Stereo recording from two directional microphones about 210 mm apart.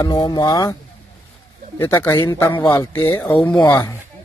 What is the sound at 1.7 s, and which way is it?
Speech, 10° left (ahead or behind).